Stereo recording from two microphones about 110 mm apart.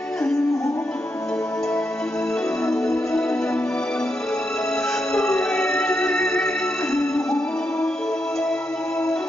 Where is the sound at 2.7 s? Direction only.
5° left (ahead or behind).